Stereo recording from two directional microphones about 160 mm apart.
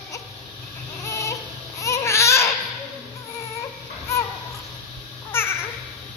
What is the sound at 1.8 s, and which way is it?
Babbling, 20° left (ahead or behind).